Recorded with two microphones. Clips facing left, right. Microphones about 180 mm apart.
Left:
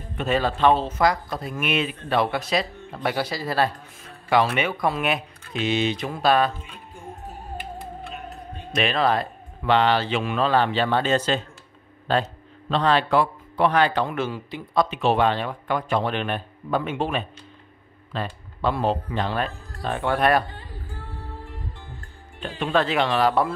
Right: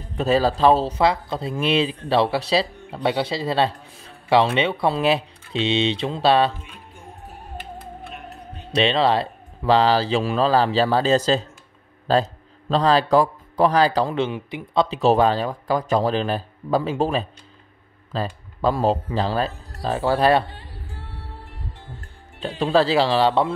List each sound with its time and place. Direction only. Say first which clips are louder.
0.2 s speech: right 3 dB; 35° right (ahead or behind)
8.7 s speech: right 3 dB; 30° right (ahead or behind)
15.0 s speech: right 6 dB; 40° right (ahead or behind)
22.6 s speech: right 4 dB; 35° right (ahead or behind)